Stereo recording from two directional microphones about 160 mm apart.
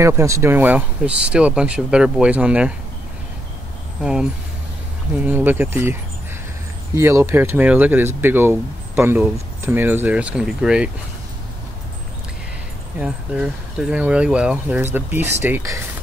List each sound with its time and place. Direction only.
0.0 s speech: 20° right (ahead or behind)
4.0 s speech: 5° right (ahead or behind)
7.0 s speech: 15° right (ahead or behind)
13.0 s speech: 5° right (ahead or behind)